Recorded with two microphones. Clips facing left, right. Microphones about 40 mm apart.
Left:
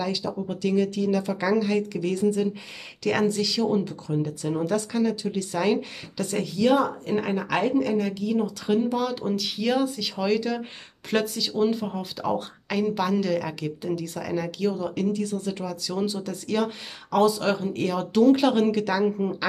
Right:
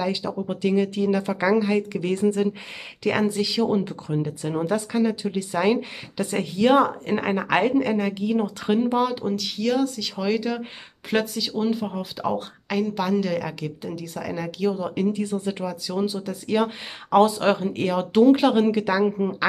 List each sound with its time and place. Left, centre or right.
0.0 s speech: right
1.4 s speech: right
3.0 s speech: centre
9.2 s speech: centre
10.1 s speech: centre; by 15.7 s right
15.7 s speech: centre
16.5 s speech: right